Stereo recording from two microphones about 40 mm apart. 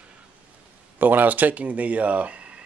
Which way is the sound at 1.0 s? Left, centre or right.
Right.